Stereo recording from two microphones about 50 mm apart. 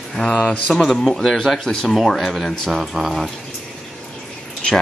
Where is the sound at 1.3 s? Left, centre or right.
Centre.